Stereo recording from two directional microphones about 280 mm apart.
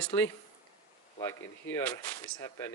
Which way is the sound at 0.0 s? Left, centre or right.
Centre.